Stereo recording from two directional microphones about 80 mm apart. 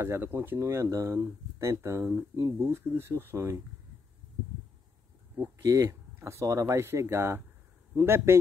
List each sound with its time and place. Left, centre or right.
0.0 s speech: right
0.6 s speech: right
2.7 s speech: right
5.6 s speech: right
5.9 s speech: right